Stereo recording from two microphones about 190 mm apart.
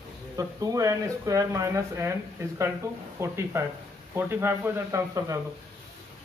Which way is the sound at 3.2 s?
15° right (ahead or behind).